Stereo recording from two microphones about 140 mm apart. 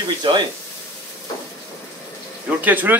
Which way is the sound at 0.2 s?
35° right (ahead or behind).